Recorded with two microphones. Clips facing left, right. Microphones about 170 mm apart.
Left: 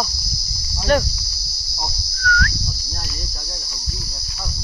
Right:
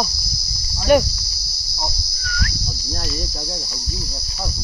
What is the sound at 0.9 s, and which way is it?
Cricket, 15° right (ahead or behind).